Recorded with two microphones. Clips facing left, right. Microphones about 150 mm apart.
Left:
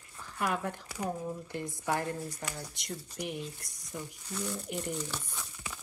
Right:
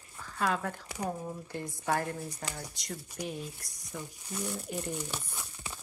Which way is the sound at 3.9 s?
15° right (ahead or behind).